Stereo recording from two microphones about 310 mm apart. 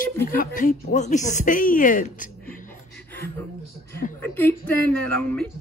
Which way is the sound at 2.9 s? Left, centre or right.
Centre.